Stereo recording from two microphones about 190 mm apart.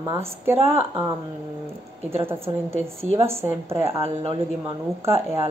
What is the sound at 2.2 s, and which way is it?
Speech, 15° right (ahead or behind).